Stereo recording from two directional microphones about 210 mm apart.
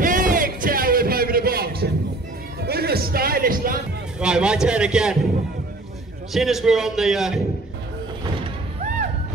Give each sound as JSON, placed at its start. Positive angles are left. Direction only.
{"t": 0.0, "sound": "a sound", "side_deg": -40}
{"t": 2.6, "sound": "music", "side_deg": -50}
{"t": 4.2, "sound": "a man's voice", "side_deg": -5}
{"t": 6.3, "sound": "a man's voice", "side_deg": 0}